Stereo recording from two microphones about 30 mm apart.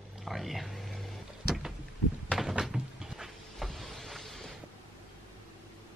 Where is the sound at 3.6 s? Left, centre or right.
Centre.